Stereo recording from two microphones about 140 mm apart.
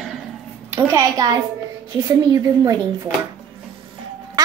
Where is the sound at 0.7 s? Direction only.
20° right (ahead or behind).